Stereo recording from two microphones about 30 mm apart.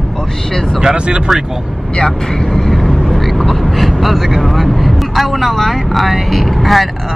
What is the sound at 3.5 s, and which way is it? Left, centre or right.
Speech, centre.